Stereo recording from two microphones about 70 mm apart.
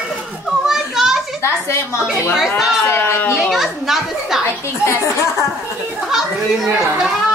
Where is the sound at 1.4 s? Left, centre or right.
Left.